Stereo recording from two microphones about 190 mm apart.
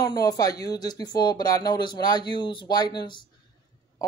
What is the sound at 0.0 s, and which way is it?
Speech, 20° left (ahead or behind).